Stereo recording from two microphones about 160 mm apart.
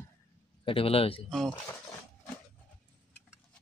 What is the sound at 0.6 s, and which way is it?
Speech, 35° left (ahead or behind).